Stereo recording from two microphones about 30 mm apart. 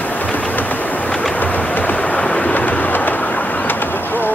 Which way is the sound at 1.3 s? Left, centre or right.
Left.